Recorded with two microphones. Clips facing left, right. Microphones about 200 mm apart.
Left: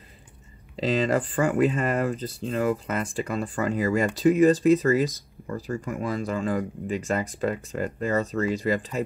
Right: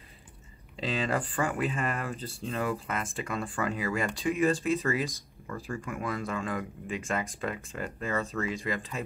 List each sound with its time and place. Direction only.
0.7 s speech: 40° left (ahead or behind)